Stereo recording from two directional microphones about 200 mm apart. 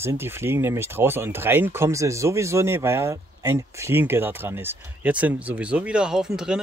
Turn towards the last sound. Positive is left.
turn(degrees=-5)  # may be behind; listen again after turning